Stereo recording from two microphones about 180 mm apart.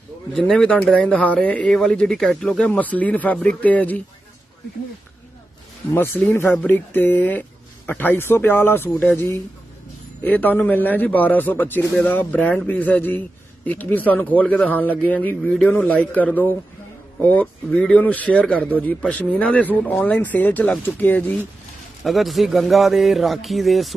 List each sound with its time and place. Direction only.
0.3 s a man's voice: 5° left (ahead or behind)
5.9 s a man's voice: 10° left (ahead or behind)